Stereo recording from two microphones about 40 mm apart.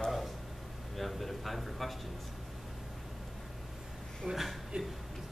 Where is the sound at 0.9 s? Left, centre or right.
Centre.